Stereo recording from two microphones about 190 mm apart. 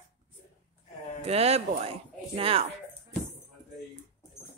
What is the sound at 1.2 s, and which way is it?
A woman's voice, 35° right (ahead or behind).